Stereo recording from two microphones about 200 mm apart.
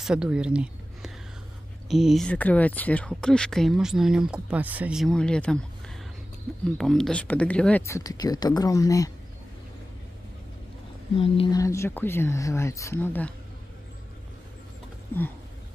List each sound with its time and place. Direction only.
0.0 s speech: 5° right (ahead or behind)
6.8 s speech: centre (ahead or behind)
11.1 s speech: 25° left (ahead or behind)
11.6 s speech: 15° left (ahead or behind)